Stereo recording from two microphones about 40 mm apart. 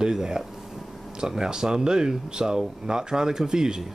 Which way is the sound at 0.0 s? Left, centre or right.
Centre.